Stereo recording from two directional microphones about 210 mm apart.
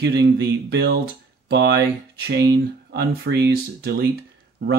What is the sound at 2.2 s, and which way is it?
Speech, 55° right (ahead or behind).